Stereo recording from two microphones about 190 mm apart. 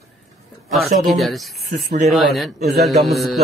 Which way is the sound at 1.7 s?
40° right (ahead or behind).